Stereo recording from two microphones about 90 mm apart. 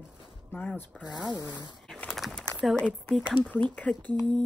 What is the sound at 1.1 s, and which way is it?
Speech, 50° left (ahead or behind).